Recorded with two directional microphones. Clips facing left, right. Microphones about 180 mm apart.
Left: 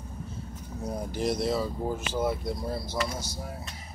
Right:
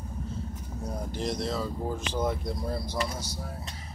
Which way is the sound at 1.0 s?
5° left (ahead or behind).